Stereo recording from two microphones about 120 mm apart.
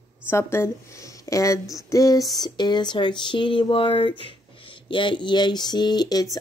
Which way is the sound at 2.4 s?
40° left (ahead or behind).